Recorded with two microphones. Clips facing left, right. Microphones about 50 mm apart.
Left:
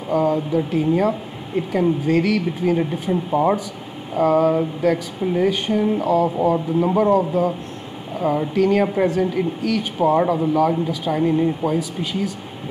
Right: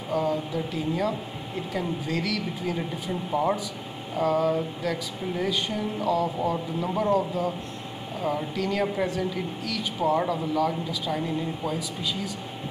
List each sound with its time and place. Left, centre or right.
0.1 s speech: left
2.8 s speech: left
4.2 s speech: left
8.2 s speech: left
8.5 s speech: left
8.8 s speech: left
9.1 s speech: left
10.0 s speech: left